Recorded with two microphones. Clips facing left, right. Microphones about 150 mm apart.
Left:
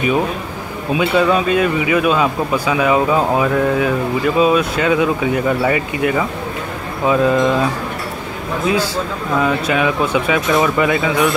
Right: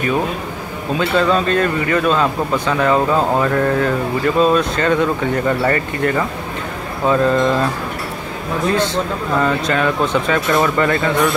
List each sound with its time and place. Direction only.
0.9 s speech: 10° left (ahead or behind)